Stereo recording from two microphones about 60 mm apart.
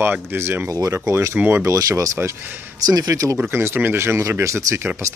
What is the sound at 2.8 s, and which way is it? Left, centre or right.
Speech, right.